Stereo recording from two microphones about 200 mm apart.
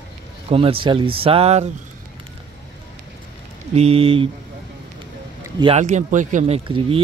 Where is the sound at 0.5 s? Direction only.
30° right (ahead or behind).